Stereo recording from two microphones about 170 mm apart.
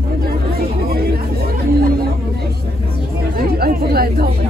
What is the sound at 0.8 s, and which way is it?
Chatter, 65° right (ahead or behind).